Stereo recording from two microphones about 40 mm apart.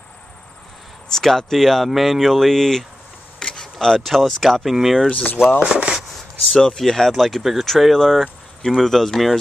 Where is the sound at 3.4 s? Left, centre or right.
Left.